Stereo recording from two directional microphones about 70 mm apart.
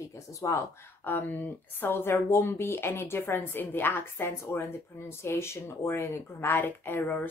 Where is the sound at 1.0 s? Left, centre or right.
Left.